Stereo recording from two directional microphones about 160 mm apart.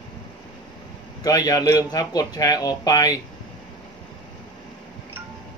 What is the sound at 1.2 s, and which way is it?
Speech, 25° left (ahead or behind).